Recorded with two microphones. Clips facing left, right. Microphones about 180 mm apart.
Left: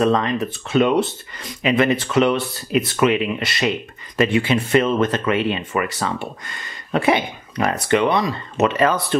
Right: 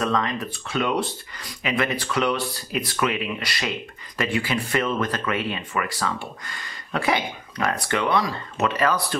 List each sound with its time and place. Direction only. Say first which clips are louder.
0.0 s speech: left 6 dB; 25° left (ahead or behind)